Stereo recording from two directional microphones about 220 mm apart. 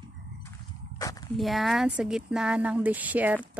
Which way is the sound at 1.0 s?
15° left (ahead or behind).